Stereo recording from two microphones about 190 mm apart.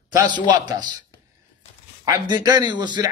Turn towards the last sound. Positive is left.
turn(degrees=-25)  # may be behind; listen again after turning